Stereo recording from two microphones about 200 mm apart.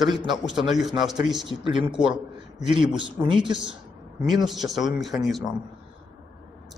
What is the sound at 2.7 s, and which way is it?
Speech, 25° right (ahead or behind).